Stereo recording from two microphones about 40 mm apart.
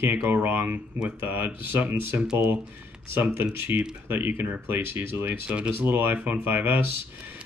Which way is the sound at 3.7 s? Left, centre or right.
Right.